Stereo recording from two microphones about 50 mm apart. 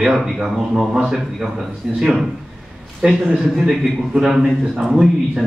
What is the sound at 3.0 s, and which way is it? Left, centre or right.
Speech, centre.